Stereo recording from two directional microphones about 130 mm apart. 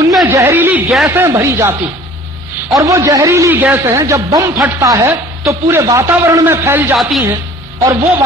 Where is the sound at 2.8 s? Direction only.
25° right (ahead or behind).